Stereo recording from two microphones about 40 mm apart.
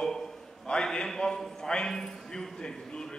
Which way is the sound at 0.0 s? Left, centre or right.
Centre.